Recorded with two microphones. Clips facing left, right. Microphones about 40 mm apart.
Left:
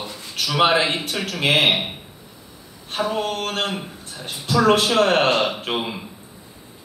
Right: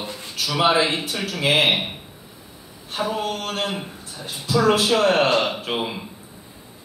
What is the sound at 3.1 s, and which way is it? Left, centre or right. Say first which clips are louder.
A woman's voice: left 2 dB; left.